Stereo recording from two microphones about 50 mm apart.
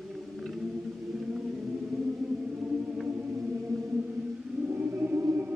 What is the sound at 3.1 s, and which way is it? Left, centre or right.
Music, right.